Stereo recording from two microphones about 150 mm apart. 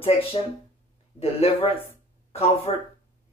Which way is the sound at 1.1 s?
40° left (ahead or behind).